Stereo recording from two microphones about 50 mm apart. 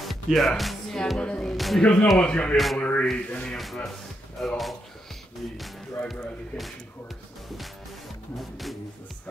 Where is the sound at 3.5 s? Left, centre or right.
Centre.